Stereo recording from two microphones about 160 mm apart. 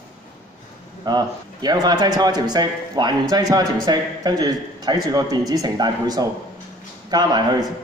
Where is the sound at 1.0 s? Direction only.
25° right (ahead or behind).